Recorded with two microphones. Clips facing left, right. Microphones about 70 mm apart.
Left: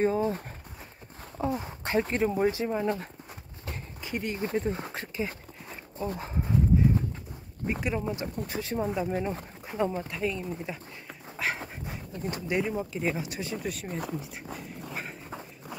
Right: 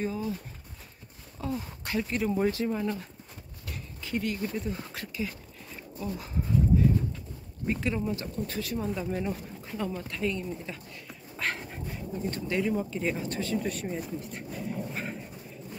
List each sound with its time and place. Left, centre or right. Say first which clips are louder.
0.0 s speech: left 6 dB; left
1.4 s speech: left 4 dB; left
2.3 s speech: left 1 dB; centre
3.6 s a sound: left 2 dB; left
4.5 s dog: left 4 dB; left
7.6 s speech: even; centre
10.1 s speech: even; centre
10.6 s speech: left 3 dB; centre
11.3 s dog: left 1 dB; centre
12.3 s speech: even; centre
12.9 s speech: even; centre
13.6 s speech: right 3 dB; centre
14.2 s a sound: right 3 dB; centre